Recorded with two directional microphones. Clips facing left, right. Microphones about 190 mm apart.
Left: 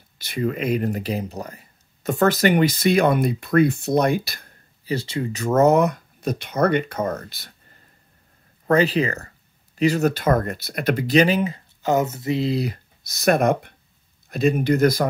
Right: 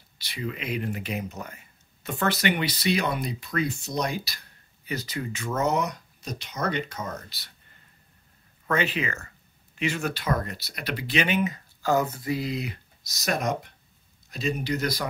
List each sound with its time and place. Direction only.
0.2 s speech: 50° left (ahead or behind)
4.8 s speech: 30° left (ahead or behind); by 7.5 s 50° left (ahead or behind)
8.6 s speech: 35° left (ahead or behind)
13.0 s speech: 55° left (ahead or behind)